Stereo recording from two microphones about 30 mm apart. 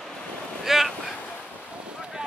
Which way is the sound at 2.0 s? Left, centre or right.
Right.